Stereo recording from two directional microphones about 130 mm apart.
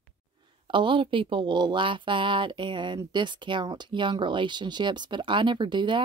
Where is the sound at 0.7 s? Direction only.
40° right (ahead or behind).